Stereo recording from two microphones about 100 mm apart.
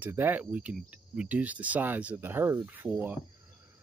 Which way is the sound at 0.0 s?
20° right (ahead or behind).